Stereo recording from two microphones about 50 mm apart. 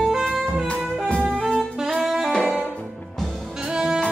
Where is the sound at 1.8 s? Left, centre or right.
Centre.